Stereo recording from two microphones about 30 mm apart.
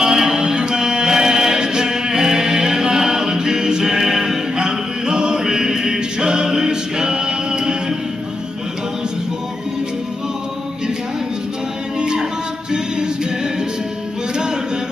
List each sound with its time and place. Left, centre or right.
0.0 s music: centre
4.6 s a capella: right
12.0 s music: right